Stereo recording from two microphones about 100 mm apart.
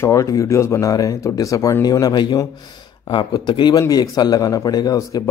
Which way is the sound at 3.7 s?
40° left (ahead or behind).